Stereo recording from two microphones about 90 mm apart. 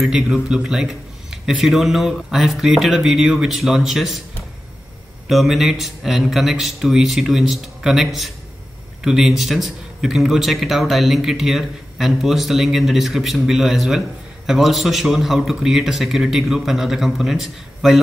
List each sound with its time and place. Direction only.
0.0 s a man's voice: 5° right (ahead or behind)
5.3 s a man's voice: centre (ahead or behind)